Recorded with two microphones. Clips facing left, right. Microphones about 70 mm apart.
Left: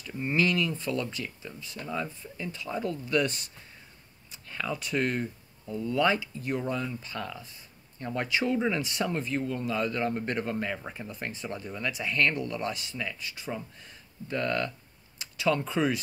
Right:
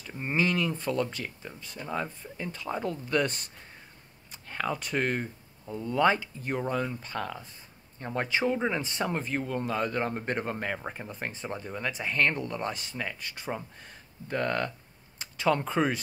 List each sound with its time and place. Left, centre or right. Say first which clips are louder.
0.0 s a sound: left 1 dB; right
0.7 s speech: right 2 dB; right
8.0 s speech: right 1 dB; right
9.2 s speech: even; right